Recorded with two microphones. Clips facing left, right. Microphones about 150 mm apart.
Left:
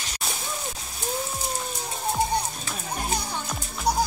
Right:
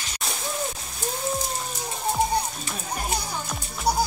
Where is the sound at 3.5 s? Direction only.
5° right (ahead or behind).